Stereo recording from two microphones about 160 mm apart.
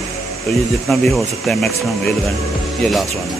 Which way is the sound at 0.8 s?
Centre (ahead or behind).